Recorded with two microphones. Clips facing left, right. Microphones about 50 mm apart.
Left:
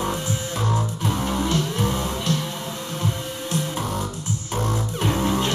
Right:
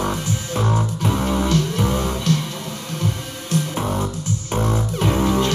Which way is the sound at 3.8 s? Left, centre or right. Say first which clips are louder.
Right 4 dB; right.